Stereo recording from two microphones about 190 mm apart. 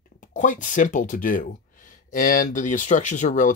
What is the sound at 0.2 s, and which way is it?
Speech, 40° left (ahead or behind).